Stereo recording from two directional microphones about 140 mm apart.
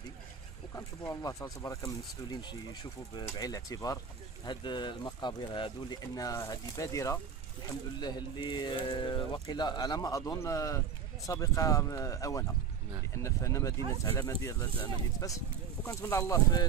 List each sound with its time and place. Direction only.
0.7 s speech: 20° left (ahead or behind)